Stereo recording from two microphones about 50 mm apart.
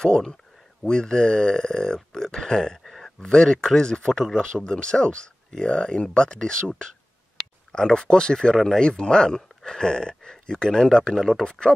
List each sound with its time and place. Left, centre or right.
0.0 s speech: centre
2.8 s a sound: centre
3.2 s speech: centre
7.7 s speech: centre